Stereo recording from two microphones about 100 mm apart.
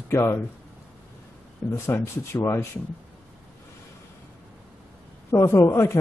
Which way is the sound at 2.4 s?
30° left (ahead or behind).